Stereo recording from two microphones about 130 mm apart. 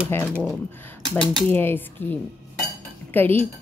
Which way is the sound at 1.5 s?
15° left (ahead or behind).